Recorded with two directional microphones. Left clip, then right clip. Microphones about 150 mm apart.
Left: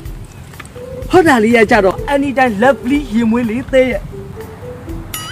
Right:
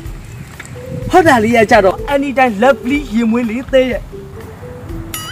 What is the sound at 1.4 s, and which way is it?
A man's voice, centre (ahead or behind).